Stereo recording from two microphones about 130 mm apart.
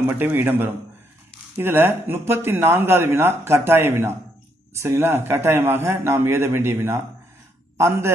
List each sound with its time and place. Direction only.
0.0 s a man's voice: 15° right (ahead or behind)